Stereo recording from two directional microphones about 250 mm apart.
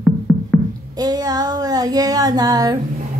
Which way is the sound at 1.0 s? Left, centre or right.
Centre.